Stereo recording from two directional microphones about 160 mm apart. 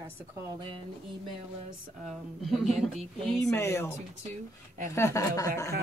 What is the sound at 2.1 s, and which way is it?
Speech, centre (ahead or behind).